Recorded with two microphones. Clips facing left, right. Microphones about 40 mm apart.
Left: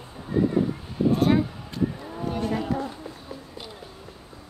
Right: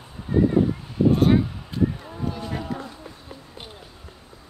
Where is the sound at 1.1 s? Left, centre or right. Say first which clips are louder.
Right 2 dB; centre.